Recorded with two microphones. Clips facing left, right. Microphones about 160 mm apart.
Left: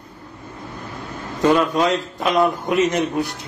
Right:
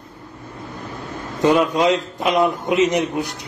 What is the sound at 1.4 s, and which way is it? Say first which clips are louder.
A man's voice: right 1 dB; 20° right (ahead or behind).